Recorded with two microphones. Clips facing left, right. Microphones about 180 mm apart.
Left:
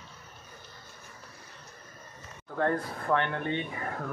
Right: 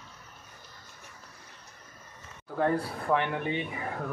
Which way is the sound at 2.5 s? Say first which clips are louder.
Right 1 dB; 10° right (ahead or behind).